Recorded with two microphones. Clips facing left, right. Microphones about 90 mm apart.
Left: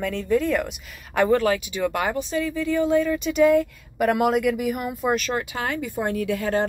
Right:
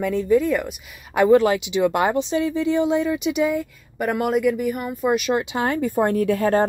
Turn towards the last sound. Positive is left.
turn(degrees=-40)  # may be behind; listen again after turning